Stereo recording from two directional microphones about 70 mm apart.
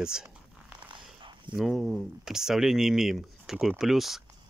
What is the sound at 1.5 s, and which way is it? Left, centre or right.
Speech, centre.